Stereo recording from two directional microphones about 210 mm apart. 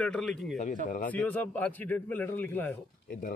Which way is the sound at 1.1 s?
10° left (ahead or behind).